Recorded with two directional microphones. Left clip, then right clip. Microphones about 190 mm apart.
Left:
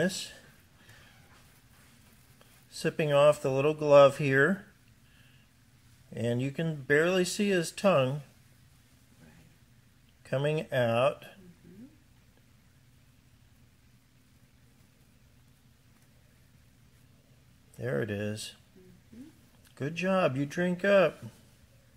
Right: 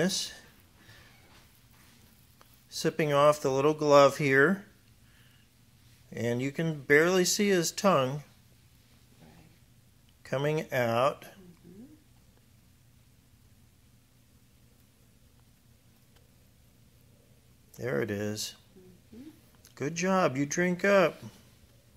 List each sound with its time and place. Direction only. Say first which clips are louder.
0.0 s speech: right 1 dB; 5° left (ahead or behind)
2.3 s speech: right 5 dB; 5° left (ahead or behind)
6.1 s speech: right 1 dB; centre (ahead or behind)
10.2 s speech: even; centre (ahead or behind)
17.7 s speech: right 1 dB; centre (ahead or behind)
19.7 s speech: right 1 dB; centre (ahead or behind)